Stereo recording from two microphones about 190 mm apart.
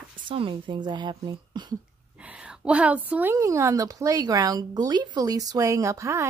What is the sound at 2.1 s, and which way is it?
A woman's voice, 5° right (ahead or behind).